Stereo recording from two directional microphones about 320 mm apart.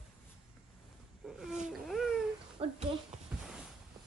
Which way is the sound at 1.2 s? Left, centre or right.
Centre.